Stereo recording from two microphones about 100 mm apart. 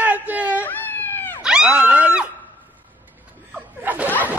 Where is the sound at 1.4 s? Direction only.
10° right (ahead or behind).